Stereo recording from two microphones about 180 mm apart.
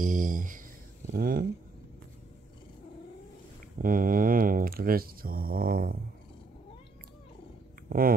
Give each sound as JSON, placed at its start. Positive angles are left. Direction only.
{"t": 0.0, "sound": "a sound", "side_deg": -45}
{"t": 1.1, "sound": "speech", "side_deg": -55}
{"t": 3.7, "sound": "speech", "side_deg": -50}
{"t": 7.9, "sound": "speech", "side_deg": -55}